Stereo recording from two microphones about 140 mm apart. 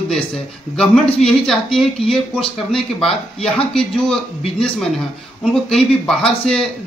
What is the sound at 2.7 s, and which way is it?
Speech, 5° left (ahead or behind).